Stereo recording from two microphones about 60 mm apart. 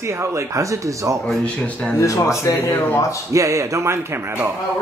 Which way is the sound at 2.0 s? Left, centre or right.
Left.